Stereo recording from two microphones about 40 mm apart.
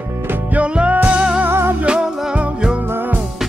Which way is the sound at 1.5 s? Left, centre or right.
Right.